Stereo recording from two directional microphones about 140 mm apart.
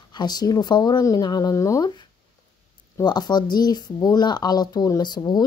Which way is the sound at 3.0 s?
30° left (ahead or behind).